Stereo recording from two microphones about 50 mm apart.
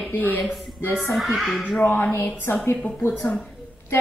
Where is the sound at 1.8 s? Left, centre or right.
Left.